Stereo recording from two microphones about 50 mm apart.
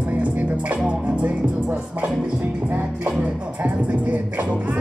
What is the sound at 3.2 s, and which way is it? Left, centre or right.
Music, right.